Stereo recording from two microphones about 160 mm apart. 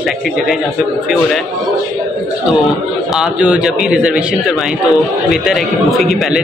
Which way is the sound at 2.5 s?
Centre (ahead or behind).